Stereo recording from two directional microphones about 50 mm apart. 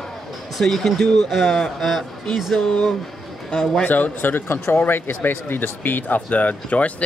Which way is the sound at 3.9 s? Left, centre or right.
Left.